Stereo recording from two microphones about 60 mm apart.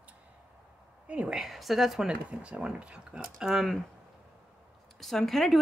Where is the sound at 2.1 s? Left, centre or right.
Right.